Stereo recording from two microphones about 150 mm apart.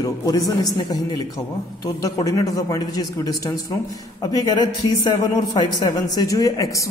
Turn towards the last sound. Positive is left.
turn(degrees=20)  # may be behind; listen again after turning